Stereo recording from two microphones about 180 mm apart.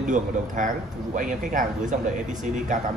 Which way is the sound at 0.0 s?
45° right (ahead or behind).